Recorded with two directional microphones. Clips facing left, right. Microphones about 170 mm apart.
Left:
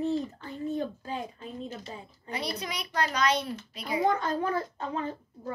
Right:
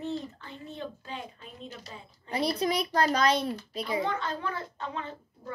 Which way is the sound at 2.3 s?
35° right (ahead or behind).